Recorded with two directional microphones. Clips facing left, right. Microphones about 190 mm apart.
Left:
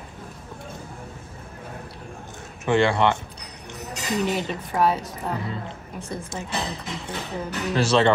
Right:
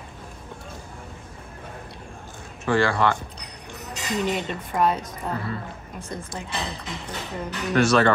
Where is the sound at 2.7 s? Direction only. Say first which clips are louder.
Left 2 dB; 20° left (ahead or behind).